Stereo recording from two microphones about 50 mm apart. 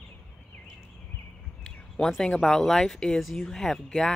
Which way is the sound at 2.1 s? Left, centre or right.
Centre.